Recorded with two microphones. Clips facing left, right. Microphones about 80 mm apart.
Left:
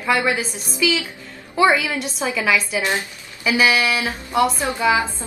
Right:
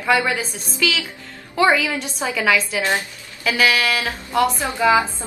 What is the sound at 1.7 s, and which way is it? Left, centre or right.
A woman's voice, centre.